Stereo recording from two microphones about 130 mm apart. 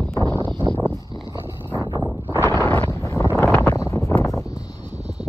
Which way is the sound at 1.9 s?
15° right (ahead or behind).